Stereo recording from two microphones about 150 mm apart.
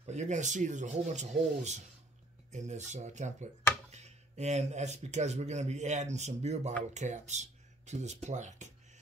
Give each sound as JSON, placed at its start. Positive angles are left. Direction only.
{"t": 0.0, "sound": "speech", "side_deg": -50}